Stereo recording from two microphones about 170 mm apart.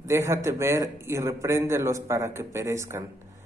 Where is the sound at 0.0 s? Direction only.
15° right (ahead or behind).